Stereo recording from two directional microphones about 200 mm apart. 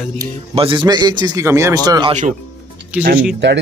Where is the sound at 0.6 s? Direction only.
25° right (ahead or behind).